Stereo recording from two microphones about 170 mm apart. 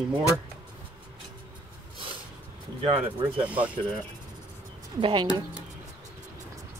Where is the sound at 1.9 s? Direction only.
30° right (ahead or behind).